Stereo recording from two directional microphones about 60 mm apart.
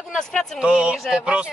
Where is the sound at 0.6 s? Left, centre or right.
Centre.